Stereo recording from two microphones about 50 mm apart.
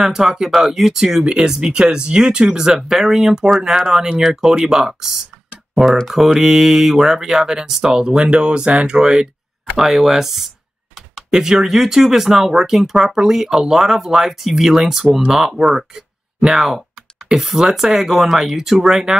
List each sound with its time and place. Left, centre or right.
0.0 s speech: centre